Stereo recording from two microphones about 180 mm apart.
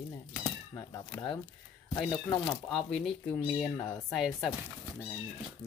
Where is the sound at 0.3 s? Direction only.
15° left (ahead or behind).